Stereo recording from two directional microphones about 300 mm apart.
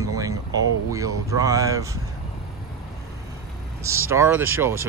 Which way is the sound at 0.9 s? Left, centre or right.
Centre.